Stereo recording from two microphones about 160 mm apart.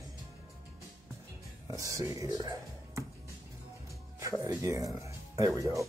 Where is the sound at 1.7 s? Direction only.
20° right (ahead or behind).